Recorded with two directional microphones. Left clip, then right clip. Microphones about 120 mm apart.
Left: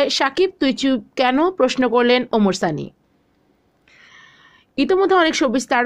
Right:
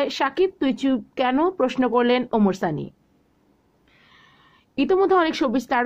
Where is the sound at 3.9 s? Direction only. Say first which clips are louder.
Left 8 dB; 30° left (ahead or behind).